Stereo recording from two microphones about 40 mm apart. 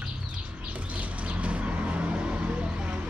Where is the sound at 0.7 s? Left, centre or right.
Right.